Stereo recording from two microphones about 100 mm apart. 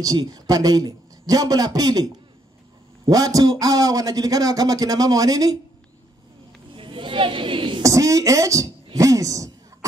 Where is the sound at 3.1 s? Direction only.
40° right (ahead or behind).